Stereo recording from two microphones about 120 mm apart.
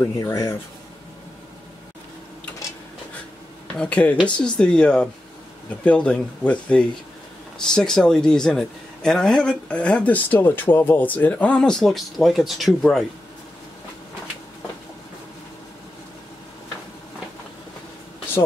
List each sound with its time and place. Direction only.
0.0 s speech: 30° left (ahead or behind)
3.6 s a man's voice: 10° left (ahead or behind)